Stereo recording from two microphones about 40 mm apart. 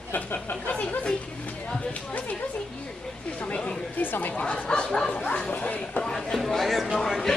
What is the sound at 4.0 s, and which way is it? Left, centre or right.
Speech, left.